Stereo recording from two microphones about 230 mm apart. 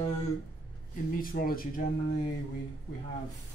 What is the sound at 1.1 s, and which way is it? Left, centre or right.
Speech, left.